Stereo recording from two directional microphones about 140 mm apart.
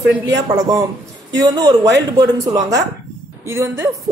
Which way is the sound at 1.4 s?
25° right (ahead or behind).